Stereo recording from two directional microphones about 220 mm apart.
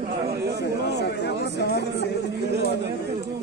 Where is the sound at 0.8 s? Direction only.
50° left (ahead or behind).